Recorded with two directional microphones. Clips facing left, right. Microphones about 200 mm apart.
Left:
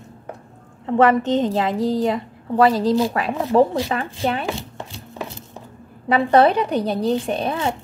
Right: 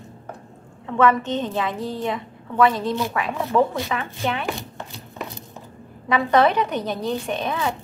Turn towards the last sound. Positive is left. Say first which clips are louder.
# left 3 dB
turn(degrees=30)  # may be behind; listen again after turning